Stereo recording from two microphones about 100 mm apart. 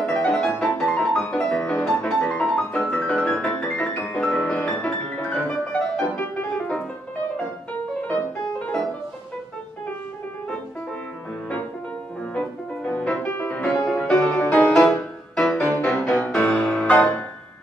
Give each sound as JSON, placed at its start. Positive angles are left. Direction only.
{"t": 0.3, "sound": "music", "side_deg": 5}
{"t": 6.1, "sound": "piano", "side_deg": 10}
{"t": 8.1, "sound": "piano", "side_deg": 15}
{"t": 12.4, "sound": "music", "side_deg": 15}
{"t": 13.7, "sound": "music", "side_deg": 5}